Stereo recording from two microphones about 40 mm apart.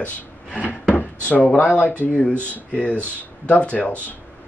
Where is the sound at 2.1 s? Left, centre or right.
Left.